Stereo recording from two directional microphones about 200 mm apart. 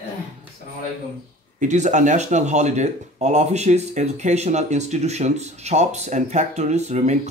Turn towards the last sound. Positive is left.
turn(degrees=-35)  # may be behind; listen again after turning